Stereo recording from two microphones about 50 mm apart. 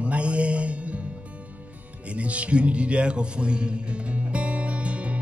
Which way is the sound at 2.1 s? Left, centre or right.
Right.